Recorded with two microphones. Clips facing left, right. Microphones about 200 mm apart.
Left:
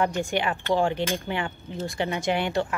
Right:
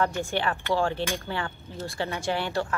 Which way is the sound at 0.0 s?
15° left (ahead or behind).